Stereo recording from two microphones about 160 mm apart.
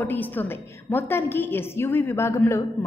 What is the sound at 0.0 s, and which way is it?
A woman's voice, 10° left (ahead or behind).